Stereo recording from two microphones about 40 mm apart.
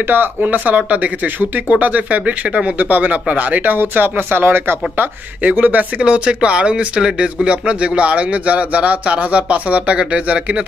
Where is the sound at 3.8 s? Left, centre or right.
Right.